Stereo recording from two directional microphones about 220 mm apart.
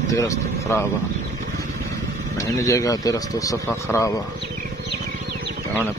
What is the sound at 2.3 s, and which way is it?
Speech, 15° left (ahead or behind).